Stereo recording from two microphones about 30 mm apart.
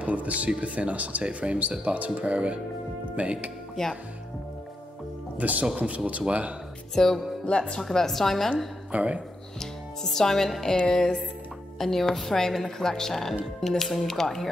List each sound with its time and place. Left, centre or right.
0.0 s speech: right
1.2 s speech: right
5.4 s speech: right
7.0 s music: centre
7.4 s speech: left
7.9 s a woman's voice: centre
8.9 s speech: right
9.6 s speech: centre
10.9 s music: left
11.8 s a woman's voice: centre